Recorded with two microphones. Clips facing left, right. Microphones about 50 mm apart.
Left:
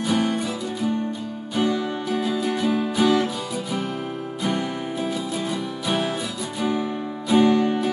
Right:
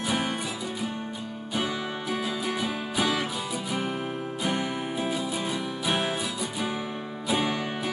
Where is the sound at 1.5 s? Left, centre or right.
Centre.